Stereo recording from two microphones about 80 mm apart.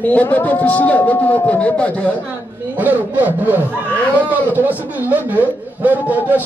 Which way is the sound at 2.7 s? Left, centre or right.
Right.